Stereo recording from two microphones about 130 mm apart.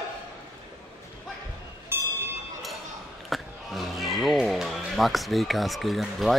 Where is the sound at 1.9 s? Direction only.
20° right (ahead or behind).